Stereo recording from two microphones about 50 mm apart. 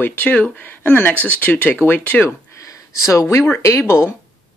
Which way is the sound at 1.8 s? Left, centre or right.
Left.